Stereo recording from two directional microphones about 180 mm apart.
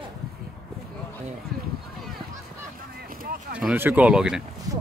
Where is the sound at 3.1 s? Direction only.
55° right (ahead or behind).